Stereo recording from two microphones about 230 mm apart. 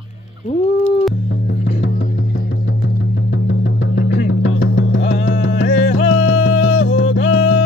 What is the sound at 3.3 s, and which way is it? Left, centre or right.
Music, left.